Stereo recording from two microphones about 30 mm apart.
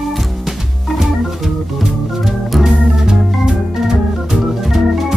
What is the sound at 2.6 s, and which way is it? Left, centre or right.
Organ, centre.